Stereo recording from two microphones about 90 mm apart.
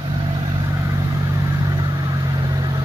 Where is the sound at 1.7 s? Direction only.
45° right (ahead or behind).